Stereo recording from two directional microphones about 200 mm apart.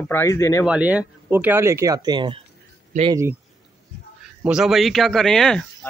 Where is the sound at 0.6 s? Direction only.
5° right (ahead or behind); by 2.4 s 20° right (ahead or behind).